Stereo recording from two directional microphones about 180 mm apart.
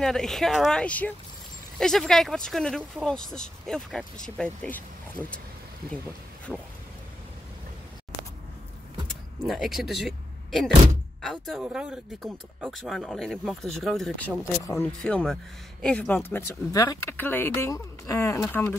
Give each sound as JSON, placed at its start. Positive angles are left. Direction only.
{"t": 0.0, "sound": "speech", "side_deg": 5}
{"t": 6.5, "sound": "speech", "side_deg": -5}
{"t": 9.5, "sound": "speech", "side_deg": 0}
{"t": 14.6, "sound": "speech", "side_deg": 15}
{"t": 15.0, "sound": "speech", "side_deg": 5}